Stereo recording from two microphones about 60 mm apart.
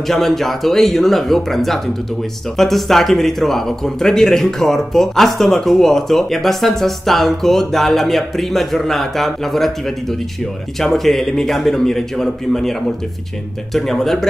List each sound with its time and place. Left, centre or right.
0.1 s speech: centre
13.7 s speech: centre